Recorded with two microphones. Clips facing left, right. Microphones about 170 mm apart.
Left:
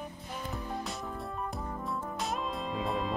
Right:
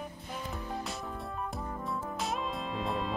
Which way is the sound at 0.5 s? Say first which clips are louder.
Left 1 dB; centre (ahead or behind).